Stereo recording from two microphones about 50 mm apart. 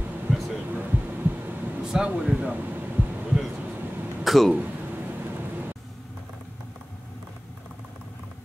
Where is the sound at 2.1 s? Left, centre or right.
Right.